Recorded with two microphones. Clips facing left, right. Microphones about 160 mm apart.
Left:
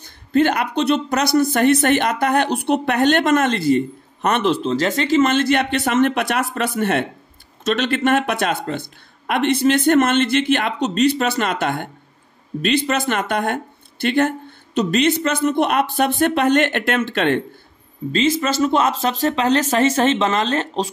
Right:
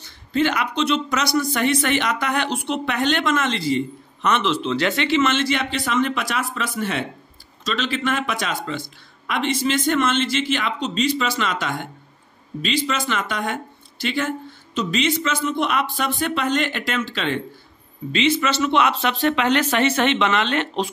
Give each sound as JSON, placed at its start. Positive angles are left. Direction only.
{"t": 0.0, "sound": "a woman's voice", "side_deg": 50}
{"t": 18.1, "sound": "speech", "side_deg": 40}